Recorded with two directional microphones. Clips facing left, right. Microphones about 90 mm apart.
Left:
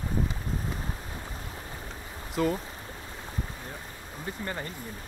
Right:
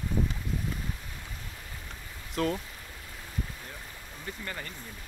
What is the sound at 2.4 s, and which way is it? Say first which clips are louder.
Speech: left 2 dB; 5° left (ahead or behind).